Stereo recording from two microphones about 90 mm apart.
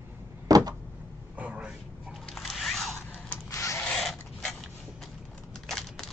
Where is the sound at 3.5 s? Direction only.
35° left (ahead or behind).